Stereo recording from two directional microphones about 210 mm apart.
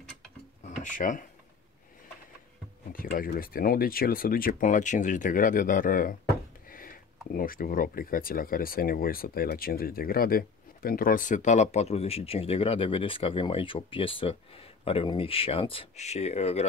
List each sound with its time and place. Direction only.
0.7 s speech: 35° left (ahead or behind)
2.9 s speech: 40° left (ahead or behind)
7.3 s speech: 40° left (ahead or behind)